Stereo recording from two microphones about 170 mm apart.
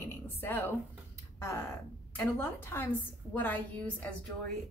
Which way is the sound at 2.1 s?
15° left (ahead or behind).